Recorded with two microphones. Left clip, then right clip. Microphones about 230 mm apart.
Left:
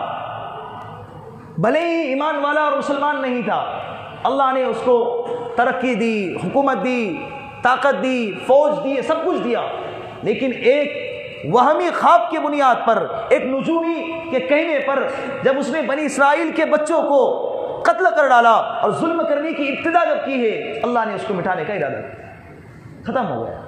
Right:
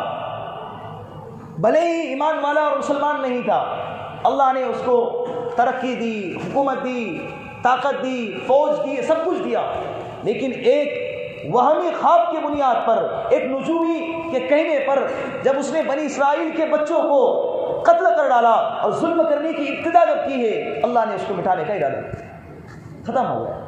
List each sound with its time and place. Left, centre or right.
1.6 s a man's voice: left
5.6 s a man's voice: left
8.9 s a man's voice: left
11.5 s a man's voice: left
13.6 s a man's voice: left